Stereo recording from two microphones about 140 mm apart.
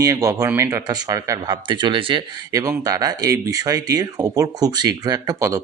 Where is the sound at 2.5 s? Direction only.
25° right (ahead or behind).